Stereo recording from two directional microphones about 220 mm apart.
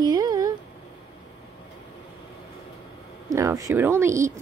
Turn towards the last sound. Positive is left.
turn(degrees=-15)  # may be behind; listen again after turning